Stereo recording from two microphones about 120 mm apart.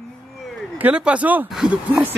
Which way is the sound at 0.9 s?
10° right (ahead or behind).